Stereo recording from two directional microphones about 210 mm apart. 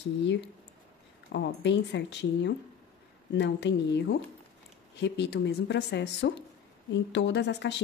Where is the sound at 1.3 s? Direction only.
55° left (ahead or behind).